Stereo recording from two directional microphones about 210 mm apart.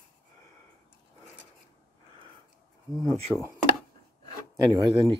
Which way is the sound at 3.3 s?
Centre (ahead or behind).